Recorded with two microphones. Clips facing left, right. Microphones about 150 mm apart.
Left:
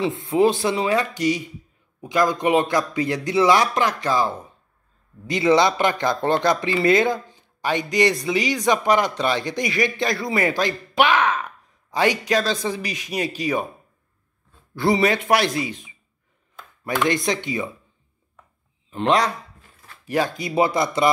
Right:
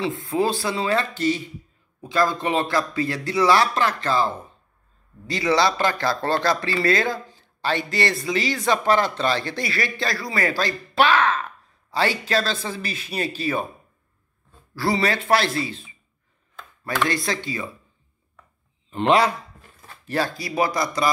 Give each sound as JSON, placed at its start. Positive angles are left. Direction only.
{"t": 0.0, "sound": "speech", "side_deg": 20}
{"t": 14.8, "sound": "speech", "side_deg": 20}
{"t": 18.9, "sound": "speech", "side_deg": 0}
{"t": 20.1, "sound": "speech", "side_deg": 15}